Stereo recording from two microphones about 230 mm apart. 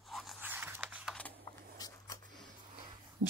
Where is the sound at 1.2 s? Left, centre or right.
Centre.